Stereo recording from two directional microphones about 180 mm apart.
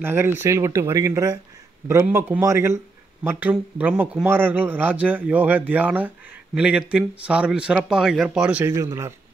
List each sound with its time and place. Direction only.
0.0 s a man's voice: 10° right (ahead or behind)